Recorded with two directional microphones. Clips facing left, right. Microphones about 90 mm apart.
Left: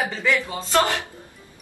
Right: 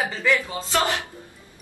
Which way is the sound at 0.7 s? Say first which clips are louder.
Left 3 dB; 20° right (ahead or behind).